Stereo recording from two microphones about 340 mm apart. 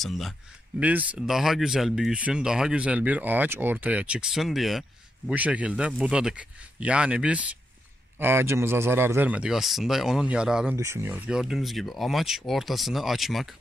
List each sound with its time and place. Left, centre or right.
0.0 s speech: centre